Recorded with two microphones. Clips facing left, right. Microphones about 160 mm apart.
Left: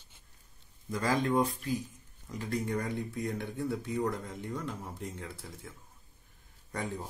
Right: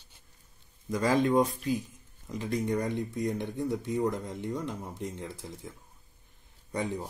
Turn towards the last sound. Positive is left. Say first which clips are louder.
# right 4 dB
turn(degrees=-20)  # may be behind; listen again after turning